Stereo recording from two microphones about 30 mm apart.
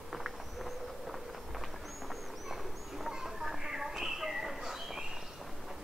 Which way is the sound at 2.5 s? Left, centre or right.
Centre.